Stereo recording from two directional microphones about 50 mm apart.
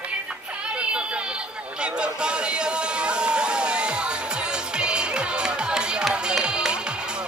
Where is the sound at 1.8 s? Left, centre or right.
Centre.